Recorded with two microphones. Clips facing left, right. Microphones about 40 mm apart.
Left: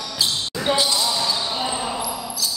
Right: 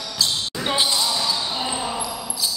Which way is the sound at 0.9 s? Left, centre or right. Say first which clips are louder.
Left 1 dB; centre.